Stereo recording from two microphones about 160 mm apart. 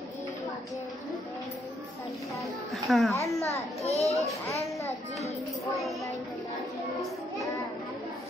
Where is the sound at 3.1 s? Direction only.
20° left (ahead or behind).